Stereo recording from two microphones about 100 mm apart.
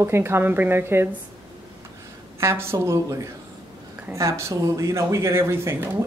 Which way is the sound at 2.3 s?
25° right (ahead or behind).